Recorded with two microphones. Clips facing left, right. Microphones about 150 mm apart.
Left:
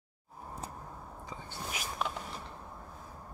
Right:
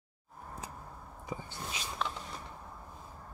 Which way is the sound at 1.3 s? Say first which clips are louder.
Right 1 dB; 20° right (ahead or behind).